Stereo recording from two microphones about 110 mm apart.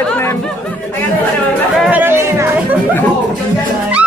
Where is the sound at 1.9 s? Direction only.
20° right (ahead or behind).